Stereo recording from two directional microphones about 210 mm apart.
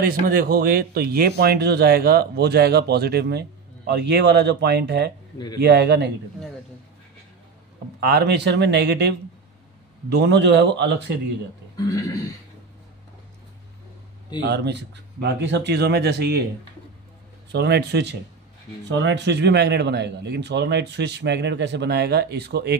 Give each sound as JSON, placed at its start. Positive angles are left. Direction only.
{"t": 0.0, "sound": "speech", "side_deg": -45}
{"t": 8.0, "sound": "a man's voice", "side_deg": -50}
{"t": 11.7, "sound": "speech", "side_deg": 15}
{"t": 14.4, "sound": "speech", "side_deg": -50}
{"t": 17.5, "sound": "speech", "side_deg": -50}